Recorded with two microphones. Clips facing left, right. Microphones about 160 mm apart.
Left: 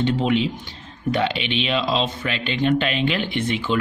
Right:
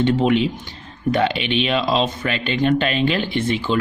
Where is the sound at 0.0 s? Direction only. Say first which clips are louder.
Right 3 dB; 50° right (ahead or behind).